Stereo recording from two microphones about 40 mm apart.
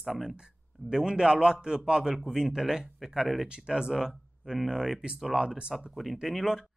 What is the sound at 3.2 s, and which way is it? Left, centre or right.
Speech, centre.